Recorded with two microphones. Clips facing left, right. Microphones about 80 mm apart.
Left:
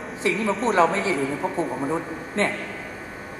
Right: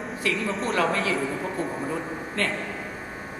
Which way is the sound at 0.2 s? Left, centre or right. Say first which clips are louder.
Left 5 dB; left.